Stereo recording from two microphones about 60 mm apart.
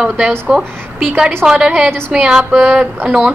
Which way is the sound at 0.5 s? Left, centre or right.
Centre.